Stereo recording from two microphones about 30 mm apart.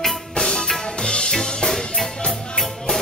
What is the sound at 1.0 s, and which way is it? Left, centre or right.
Drum kit, left.